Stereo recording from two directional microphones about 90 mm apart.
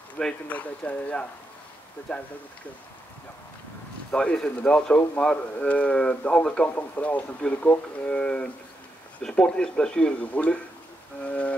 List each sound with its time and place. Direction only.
0.2 s a man's voice: 15° left (ahead or behind)
4.1 s a man's voice: 10° left (ahead or behind)